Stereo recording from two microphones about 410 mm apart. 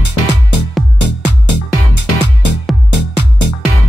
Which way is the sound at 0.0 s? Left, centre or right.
Right.